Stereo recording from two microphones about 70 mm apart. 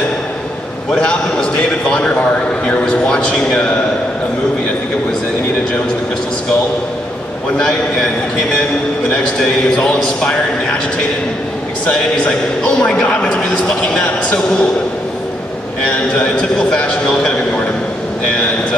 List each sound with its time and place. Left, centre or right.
0.9 s a man's voice: centre
7.5 s a man's voice: centre
9.8 s a man's voice: centre
11.8 s a man's voice: centre
16.1 s a man's voice: centre